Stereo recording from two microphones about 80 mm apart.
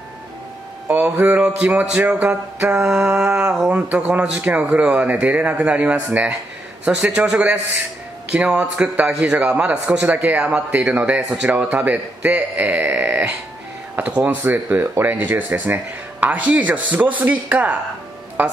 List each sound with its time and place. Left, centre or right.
0.8 s speech: right
14.4 s speech: right